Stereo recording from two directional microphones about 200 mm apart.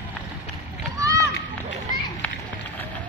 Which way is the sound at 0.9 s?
15° right (ahead or behind).